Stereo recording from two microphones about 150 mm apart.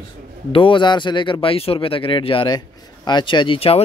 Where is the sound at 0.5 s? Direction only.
35° left (ahead or behind).